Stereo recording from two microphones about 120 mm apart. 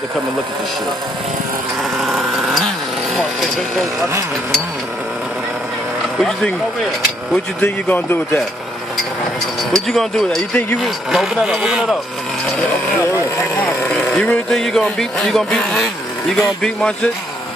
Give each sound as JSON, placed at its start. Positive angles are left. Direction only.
{"t": 1.8, "sound": "a sound", "side_deg": 0}
{"t": 3.2, "sound": "speech", "side_deg": 0}
{"t": 6.1, "sound": "speech", "side_deg": 5}
{"t": 7.6, "sound": "speech", "side_deg": 20}
{"t": 9.6, "sound": "speech", "side_deg": 0}
{"t": 13.7, "sound": "speech", "side_deg": 5}